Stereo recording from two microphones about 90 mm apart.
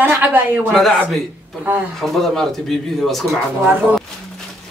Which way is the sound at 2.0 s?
Centre (ahead or behind).